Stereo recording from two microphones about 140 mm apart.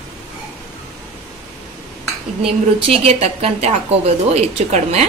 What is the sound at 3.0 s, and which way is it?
A woman's voice, 50° right (ahead or behind).